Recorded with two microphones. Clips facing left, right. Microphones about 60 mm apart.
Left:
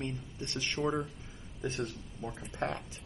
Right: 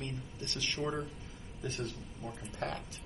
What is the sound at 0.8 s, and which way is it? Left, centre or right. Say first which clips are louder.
Speech: left 5 dB; centre.